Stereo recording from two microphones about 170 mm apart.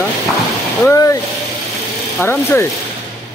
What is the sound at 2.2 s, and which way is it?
Speech, 15° left (ahead or behind).